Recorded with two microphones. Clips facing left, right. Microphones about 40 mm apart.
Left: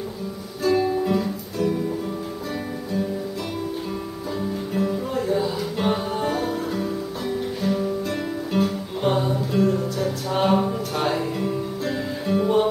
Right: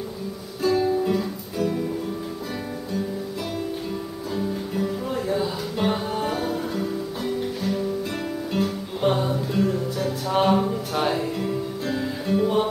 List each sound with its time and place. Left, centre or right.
0.7 s music: centre
4.4 s music: centre